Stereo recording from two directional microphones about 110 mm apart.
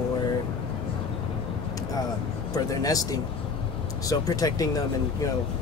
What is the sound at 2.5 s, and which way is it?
Speech, 35° left (ahead or behind).